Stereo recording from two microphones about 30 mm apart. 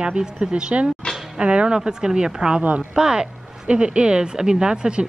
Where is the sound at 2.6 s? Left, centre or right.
Right.